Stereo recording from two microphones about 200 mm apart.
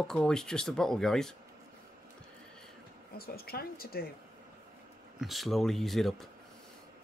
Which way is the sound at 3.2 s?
50° left (ahead or behind).